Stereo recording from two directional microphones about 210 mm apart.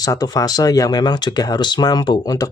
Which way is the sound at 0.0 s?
20° left (ahead or behind).